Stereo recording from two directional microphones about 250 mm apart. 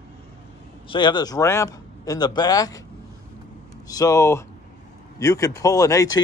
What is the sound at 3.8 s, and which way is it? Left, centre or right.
Speech, centre.